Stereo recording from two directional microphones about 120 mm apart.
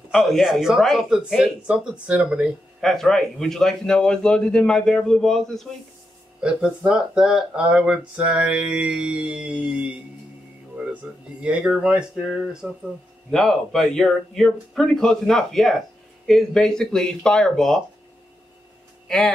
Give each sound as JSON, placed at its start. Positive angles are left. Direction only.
{"t": 0.1, "sound": "a man's voice", "side_deg": 0}
{"t": 2.8, "sound": "a man's voice", "side_deg": 5}
{"t": 6.4, "sound": "speech", "side_deg": -10}
{"t": 11.1, "sound": "a man's voice", "side_deg": -10}
{"t": 19.0, "sound": "speech", "side_deg": 5}